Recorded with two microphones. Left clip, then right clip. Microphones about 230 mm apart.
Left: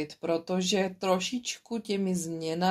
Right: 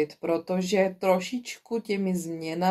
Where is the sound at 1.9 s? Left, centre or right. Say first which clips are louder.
Left 2 dB; left.